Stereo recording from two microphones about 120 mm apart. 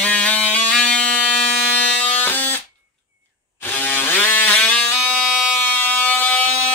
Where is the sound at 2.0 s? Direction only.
15° left (ahead or behind).